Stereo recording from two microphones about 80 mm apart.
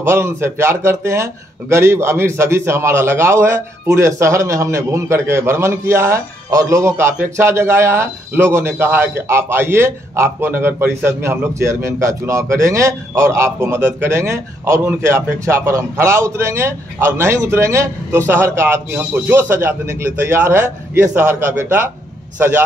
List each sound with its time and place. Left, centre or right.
0.0 s a man's voice: right